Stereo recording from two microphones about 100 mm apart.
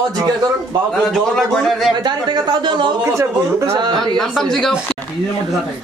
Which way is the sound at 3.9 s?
5° left (ahead or behind).